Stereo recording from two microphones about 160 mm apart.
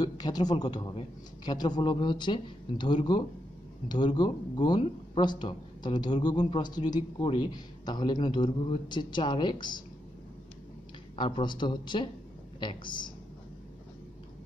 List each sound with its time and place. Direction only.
0.0 s a man's voice: 25° left (ahead or behind)
11.1 s a man's voice: 30° left (ahead or behind)